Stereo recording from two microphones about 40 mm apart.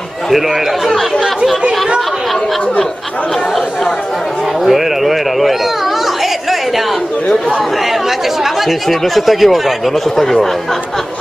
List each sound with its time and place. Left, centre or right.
4.6 s speech: centre
8.6 s speech: centre